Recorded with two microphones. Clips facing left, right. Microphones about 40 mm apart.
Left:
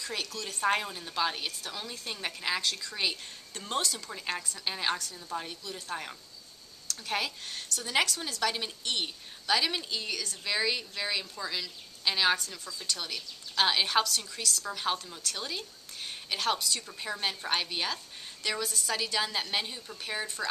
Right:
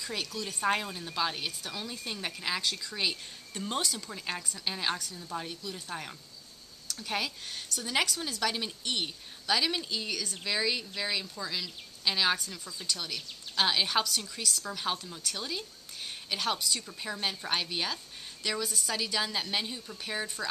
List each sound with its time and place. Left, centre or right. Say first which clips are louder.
0.1 s a woman's voice: right 1 dB; centre
12.4 s a woman's voice: even; centre
12.9 s a woman's voice: even; centre